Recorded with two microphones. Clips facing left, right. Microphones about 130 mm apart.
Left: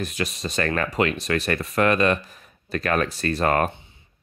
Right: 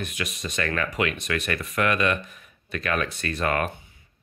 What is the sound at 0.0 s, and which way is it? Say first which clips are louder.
Speech: left 4 dB; 35° left (ahead or behind).